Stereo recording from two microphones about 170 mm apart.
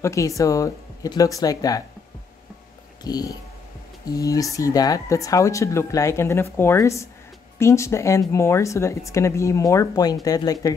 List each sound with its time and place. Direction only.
0.0 s speech: 20° left (ahead or behind)
3.0 s speech: 25° left (ahead or behind)